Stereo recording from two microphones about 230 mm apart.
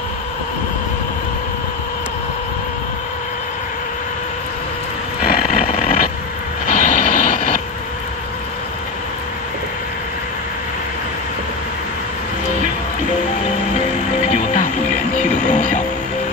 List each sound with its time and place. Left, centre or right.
5.2 s vehicle: left
14.3 s music: left